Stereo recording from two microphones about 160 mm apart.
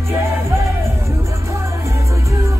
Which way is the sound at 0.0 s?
15° right (ahead or behind).